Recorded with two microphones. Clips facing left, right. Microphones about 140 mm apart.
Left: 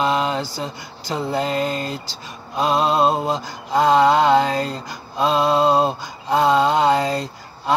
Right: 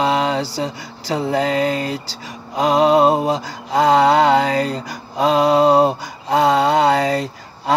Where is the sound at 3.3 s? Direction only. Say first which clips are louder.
Right 2 dB; 90° right.